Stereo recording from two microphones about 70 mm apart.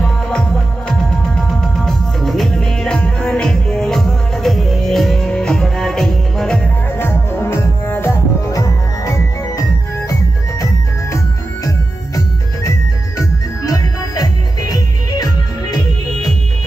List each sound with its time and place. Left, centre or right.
0.0 s music: centre
7.0 s music: left
8.5 s music: left
13.2 s music: left